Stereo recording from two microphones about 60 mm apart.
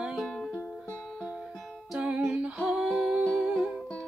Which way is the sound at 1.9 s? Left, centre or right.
Right.